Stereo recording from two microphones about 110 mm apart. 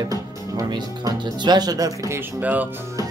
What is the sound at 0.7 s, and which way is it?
Speech, 40° right (ahead or behind).